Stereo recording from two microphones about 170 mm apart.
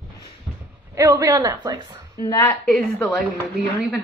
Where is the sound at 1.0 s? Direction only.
20° right (ahead or behind).